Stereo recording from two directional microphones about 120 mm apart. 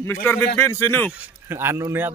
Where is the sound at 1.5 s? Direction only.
20° right (ahead or behind).